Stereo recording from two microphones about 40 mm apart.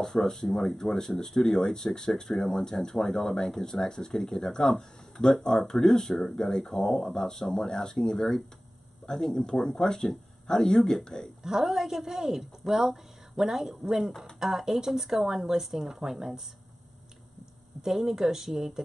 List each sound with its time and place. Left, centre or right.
0.0 s speech: centre
11.4 s a woman's voice: centre
17.8 s a woman's voice: centre